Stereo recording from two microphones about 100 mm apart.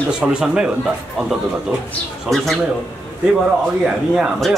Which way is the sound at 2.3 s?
Centre (ahead or behind).